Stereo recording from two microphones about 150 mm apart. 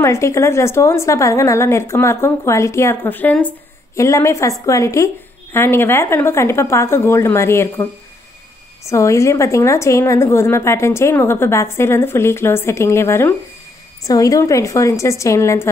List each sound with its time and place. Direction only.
0.0 s a woman's voice: 20° left (ahead or behind)
8.8 s a woman's voice: 20° left (ahead or behind)